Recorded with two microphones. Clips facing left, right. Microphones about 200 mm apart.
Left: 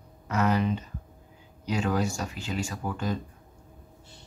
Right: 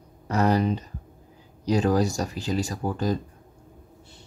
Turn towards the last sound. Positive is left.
turn(degrees=-35)  # may be behind; listen again after turning